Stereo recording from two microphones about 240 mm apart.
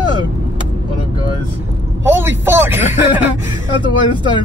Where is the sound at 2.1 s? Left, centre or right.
Centre.